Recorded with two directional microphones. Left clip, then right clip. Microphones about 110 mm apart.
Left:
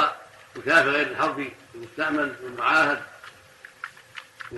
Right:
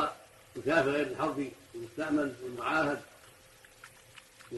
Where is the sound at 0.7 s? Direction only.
25° right (ahead or behind).